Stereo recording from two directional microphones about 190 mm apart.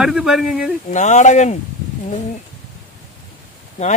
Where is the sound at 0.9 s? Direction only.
40° left (ahead or behind).